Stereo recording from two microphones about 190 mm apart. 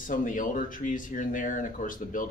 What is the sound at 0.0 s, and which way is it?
Speech, 45° left (ahead or behind).